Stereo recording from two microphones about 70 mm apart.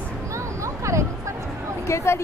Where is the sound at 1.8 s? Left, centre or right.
Left.